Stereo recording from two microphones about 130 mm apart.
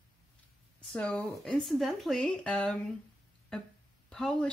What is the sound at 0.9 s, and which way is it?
Speech, 5° left (ahead or behind).